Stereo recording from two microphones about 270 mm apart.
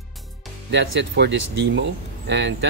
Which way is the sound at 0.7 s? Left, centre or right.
Right.